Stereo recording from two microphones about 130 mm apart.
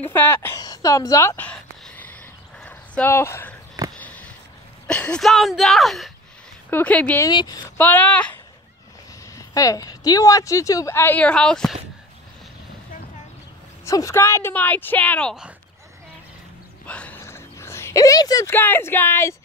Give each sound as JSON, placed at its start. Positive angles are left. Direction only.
{"t": 0.1, "sound": "a woman's voice", "side_deg": 15}
{"t": 0.6, "sound": "a sound", "side_deg": 25}
{"t": 4.8, "sound": "a woman's voice", "side_deg": 5}
{"t": 7.2, "sound": "speech", "side_deg": 30}
{"t": 7.7, "sound": "a woman's voice", "side_deg": 15}
{"t": 9.3, "sound": "a woman's voice", "side_deg": 25}
{"t": 13.8, "sound": "a woman's voice", "side_deg": 25}
{"t": 16.8, "sound": "a sound", "side_deg": 10}
{"t": 18.5, "sound": "a woman's voice", "side_deg": 15}